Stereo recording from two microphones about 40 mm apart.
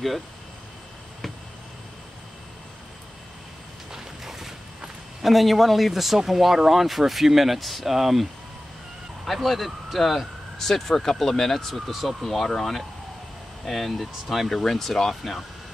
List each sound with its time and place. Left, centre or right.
3.9 s a sound: centre
5.2 s speech: centre
14.5 s speech: centre